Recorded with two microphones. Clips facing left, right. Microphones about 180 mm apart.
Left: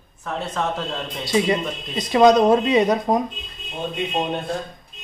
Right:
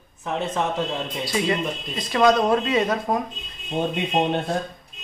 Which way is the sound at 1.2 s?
20° left (ahead or behind).